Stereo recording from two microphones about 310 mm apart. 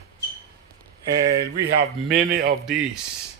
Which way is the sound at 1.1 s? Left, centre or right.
Right.